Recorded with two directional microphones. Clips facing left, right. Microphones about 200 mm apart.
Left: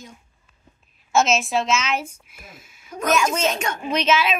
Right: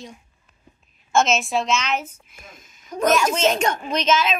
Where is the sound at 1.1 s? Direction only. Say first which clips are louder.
Even; centre (ahead or behind).